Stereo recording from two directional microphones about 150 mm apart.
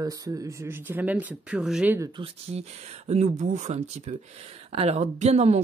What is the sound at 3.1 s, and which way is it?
Speech, 50° right (ahead or behind).